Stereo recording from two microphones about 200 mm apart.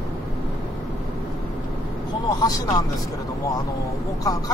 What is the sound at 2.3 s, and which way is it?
Speech, 20° left (ahead or behind).